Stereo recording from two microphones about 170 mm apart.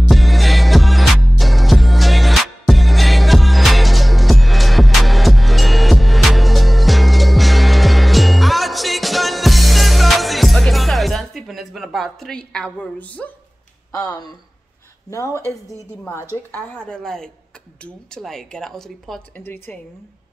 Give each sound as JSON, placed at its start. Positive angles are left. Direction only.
{"t": 0.1, "sound": "music", "side_deg": 0}
{"t": 15.0, "sound": "speech", "side_deg": 15}
{"t": 19.4, "sound": "speech", "side_deg": 15}